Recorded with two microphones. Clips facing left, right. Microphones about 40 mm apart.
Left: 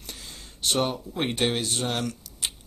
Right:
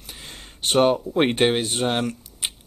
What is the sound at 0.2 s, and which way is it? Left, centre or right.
Speech, right.